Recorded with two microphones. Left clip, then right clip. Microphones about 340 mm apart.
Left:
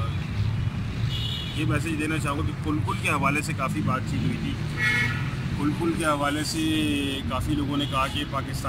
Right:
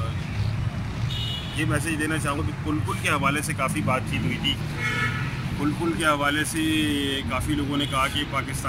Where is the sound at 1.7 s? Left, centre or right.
Centre.